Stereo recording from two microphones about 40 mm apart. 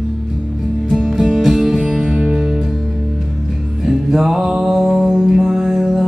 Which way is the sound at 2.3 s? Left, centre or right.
Centre.